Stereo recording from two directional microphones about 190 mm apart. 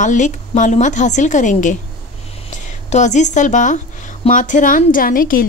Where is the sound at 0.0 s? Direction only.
40° left (ahead or behind).